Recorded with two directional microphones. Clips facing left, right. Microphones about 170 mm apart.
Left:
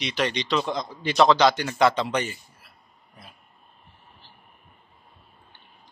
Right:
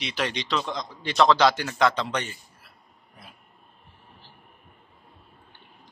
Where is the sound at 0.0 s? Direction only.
5° right (ahead or behind).